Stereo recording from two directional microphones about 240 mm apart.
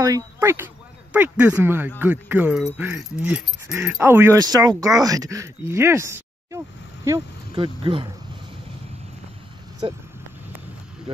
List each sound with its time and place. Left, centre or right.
0.0 s speech: centre
9.8 s speech: right